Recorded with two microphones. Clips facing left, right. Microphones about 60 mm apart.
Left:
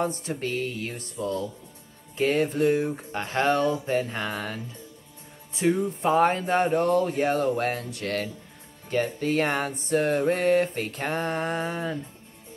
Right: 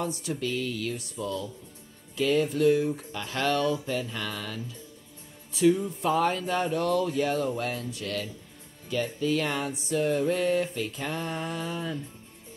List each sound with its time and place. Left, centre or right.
0.0 s speech: left
5.5 s music: left
5.9 s speech: left
8.8 s music: left